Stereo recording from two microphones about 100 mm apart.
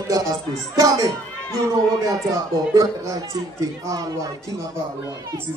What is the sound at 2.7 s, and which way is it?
Speech, 35° right (ahead or behind).